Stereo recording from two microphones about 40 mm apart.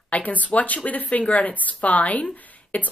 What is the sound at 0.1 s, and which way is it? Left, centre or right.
Speech, left.